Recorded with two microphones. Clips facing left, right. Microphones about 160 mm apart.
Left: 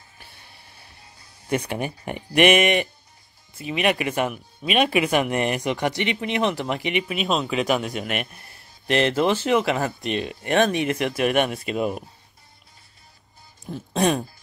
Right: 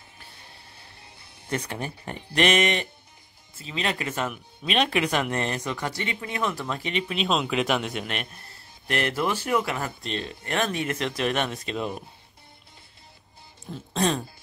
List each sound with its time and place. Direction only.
1.5 s speech: 15° left (ahead or behind)
8.5 s speech: 20° left (ahead or behind)
13.9 s speech: 15° left (ahead or behind)